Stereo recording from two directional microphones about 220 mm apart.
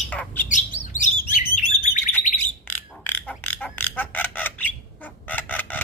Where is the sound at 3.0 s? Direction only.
10° left (ahead or behind).